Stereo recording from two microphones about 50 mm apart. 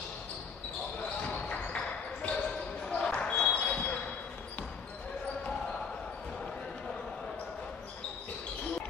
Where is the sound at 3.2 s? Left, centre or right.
Left.